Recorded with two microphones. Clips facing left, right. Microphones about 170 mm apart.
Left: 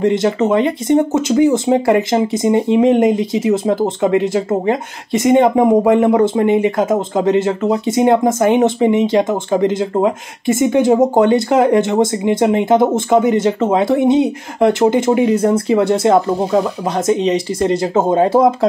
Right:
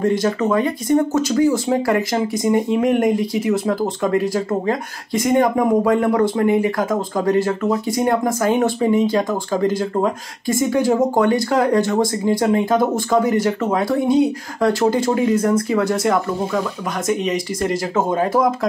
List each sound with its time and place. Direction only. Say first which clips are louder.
0.0 s speech: left 4 dB; 25° left (ahead or behind)